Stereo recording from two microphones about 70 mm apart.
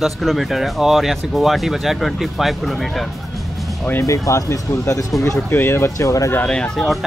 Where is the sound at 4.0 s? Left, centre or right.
Left.